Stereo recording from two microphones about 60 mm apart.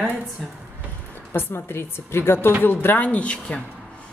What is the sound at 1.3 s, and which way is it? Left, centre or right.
A woman's voice, left.